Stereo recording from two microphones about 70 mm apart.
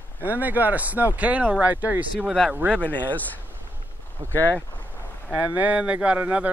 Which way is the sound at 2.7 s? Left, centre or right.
Left.